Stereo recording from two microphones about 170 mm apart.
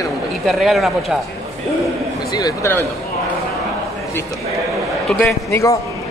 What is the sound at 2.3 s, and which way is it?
Speech, 15° left (ahead or behind).